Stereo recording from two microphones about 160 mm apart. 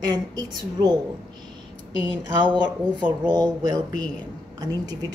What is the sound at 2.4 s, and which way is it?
A woman's voice, 30° right (ahead or behind).